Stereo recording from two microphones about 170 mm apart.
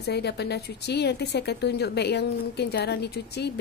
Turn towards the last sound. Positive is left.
turn(degrees=75)  # may be behind; listen again after turning